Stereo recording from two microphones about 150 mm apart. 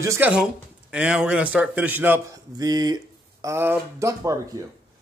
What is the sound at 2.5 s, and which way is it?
Speech, 25° right (ahead or behind).